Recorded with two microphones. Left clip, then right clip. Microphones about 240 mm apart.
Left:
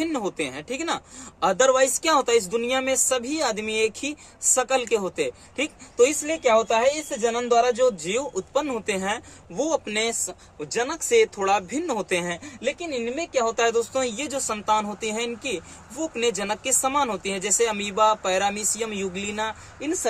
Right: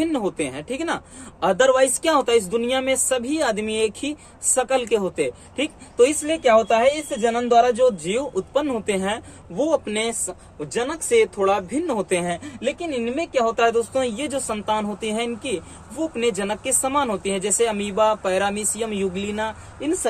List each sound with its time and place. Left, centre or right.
0.0 s a woman's voice: centre